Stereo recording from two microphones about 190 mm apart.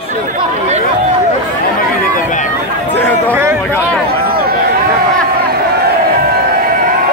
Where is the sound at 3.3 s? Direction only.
10° right (ahead or behind).